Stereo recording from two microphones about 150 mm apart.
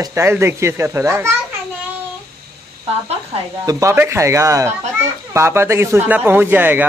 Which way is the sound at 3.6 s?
20° right (ahead or behind).